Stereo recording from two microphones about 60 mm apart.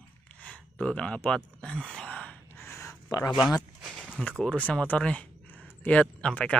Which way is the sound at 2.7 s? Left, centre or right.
Left.